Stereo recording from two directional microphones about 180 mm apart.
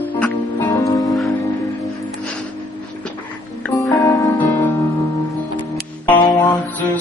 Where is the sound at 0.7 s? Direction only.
15° left (ahead or behind).